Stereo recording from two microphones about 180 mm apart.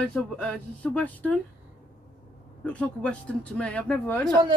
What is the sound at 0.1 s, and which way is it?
Speech, 5° left (ahead or behind).